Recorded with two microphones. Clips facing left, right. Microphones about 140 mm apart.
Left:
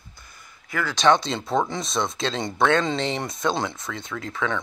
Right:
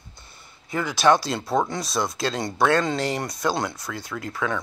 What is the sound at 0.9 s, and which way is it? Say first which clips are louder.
Speech: even; 5° right (ahead or behind).